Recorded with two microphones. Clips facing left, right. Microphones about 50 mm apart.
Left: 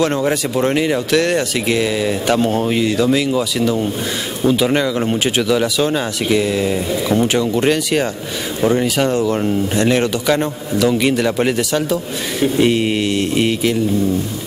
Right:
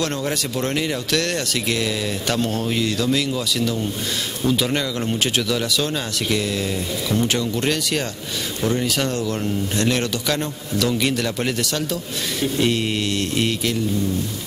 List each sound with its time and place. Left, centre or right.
0.0 s speech: centre